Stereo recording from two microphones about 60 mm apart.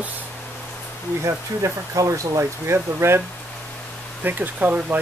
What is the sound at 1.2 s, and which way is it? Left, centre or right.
Speech, right.